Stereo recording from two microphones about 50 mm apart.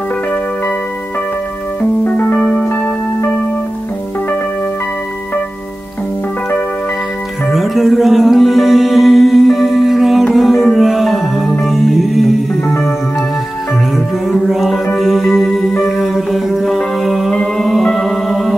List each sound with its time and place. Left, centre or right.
1.8 s music: left
2.3 s music: left
7.5 s music: centre
14.5 s music: centre